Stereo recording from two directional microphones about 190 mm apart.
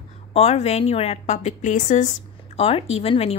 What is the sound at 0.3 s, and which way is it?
A woman's voice, 35° left (ahead or behind).